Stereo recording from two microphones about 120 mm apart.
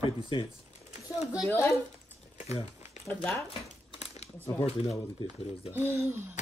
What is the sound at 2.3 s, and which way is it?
Crumpling, 60° left (ahead or behind).